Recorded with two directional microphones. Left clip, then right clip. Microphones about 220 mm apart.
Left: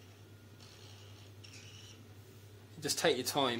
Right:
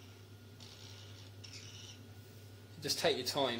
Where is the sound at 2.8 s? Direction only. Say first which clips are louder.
Left 2 dB; 25° left (ahead or behind).